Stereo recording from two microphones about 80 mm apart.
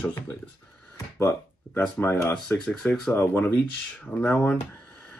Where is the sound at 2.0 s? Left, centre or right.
Left.